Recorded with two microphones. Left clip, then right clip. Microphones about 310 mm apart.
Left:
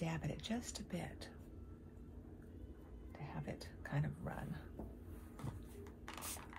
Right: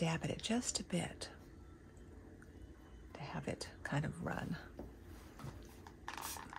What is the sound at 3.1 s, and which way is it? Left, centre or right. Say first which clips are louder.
Speech: right 5 dB; right.